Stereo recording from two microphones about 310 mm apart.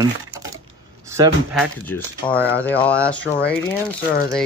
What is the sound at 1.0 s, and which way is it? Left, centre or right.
Speech, centre.